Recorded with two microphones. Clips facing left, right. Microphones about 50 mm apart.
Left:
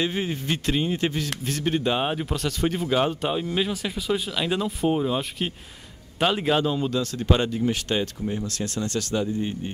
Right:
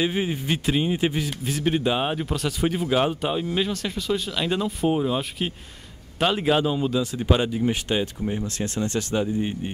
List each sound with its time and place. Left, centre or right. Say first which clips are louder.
0.0 s speech: right 2 dB; centre